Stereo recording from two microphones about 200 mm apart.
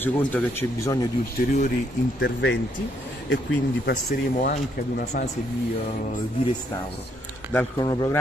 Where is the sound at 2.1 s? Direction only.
60° left (ahead or behind).